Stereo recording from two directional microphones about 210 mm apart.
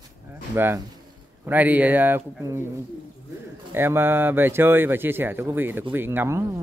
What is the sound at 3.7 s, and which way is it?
Speech, 10° right (ahead or behind).